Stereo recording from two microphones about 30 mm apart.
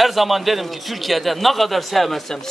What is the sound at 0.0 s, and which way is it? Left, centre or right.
A man's voice, centre.